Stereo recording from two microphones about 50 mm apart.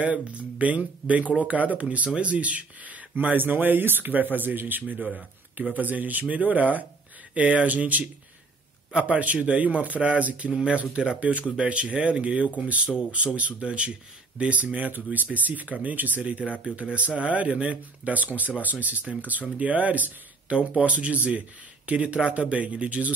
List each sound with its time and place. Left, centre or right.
0.0 s speech: right